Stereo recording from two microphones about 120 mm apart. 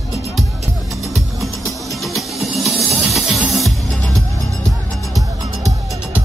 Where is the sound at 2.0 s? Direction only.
Centre (ahead or behind).